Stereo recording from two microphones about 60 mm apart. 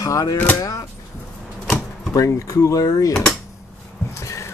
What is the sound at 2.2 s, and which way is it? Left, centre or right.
Speech, left.